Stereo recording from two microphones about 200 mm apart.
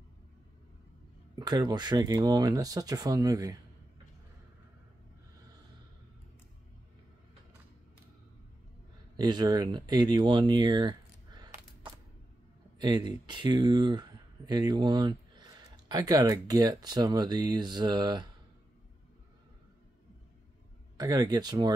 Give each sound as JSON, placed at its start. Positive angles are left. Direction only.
{"t": 1.3, "sound": "speech", "side_deg": -20}
{"t": 9.1, "sound": "speech", "side_deg": -20}
{"t": 21.0, "sound": "speech", "side_deg": -20}